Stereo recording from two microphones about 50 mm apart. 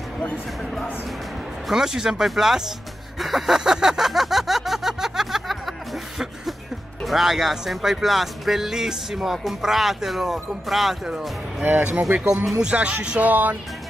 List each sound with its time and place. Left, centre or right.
1.7 s speech: centre
3.2 s a sound: centre
7.1 s speech: centre
12.0 s speech: centre; by 13.6 s right